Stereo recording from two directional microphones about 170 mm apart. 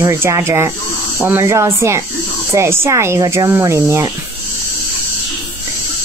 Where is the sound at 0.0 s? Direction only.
15° right (ahead or behind).